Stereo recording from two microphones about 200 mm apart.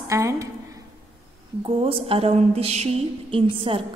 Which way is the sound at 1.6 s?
25° right (ahead or behind).